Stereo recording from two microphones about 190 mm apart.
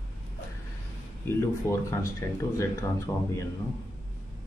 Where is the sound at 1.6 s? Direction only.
15° left (ahead or behind).